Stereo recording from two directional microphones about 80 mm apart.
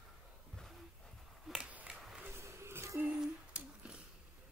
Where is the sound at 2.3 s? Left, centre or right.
Right.